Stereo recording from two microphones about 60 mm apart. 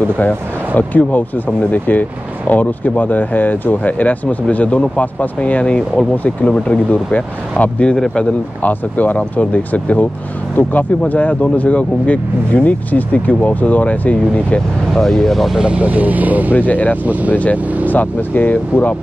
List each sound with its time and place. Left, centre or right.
0.7 s speech: left
15.0 s speech: centre
15.6 s speech: right
16.5 s speech: left
17.0 s speech: right
17.8 s speech: left